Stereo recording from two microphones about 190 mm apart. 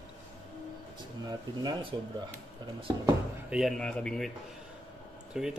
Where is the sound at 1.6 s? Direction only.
25° right (ahead or behind).